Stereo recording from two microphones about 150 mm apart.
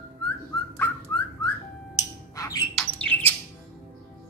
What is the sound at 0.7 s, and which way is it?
Whistling, 10° left (ahead or behind).